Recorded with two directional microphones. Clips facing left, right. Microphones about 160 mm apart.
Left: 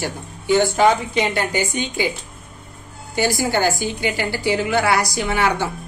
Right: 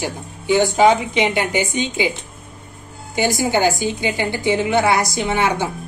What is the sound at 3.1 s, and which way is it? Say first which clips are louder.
A woman's voice: right 1 dB; 20° right (ahead or behind).